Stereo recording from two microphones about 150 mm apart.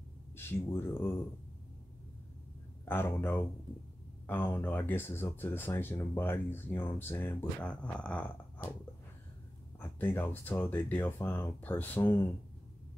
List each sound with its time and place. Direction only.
0.4 s speech: 15° left (ahead or behind)
2.8 s speech: 15° left (ahead or behind)
9.8 s speech: 15° left (ahead or behind)